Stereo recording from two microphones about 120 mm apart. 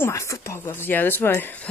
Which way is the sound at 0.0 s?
25° left (ahead or behind).